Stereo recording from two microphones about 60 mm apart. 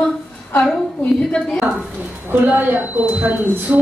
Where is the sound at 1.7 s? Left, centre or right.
Right.